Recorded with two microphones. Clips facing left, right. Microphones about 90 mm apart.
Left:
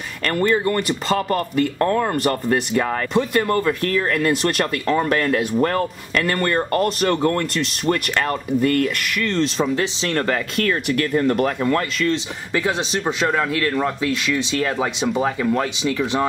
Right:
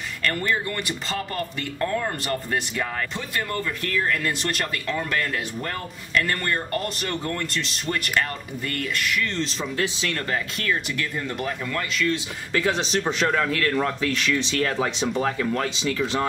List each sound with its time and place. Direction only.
0.2 s speech: 45° left (ahead or behind)
9.6 s speech: 35° left (ahead or behind)
10.1 s speech: 50° left (ahead or behind)
12.5 s speech: 15° left (ahead or behind)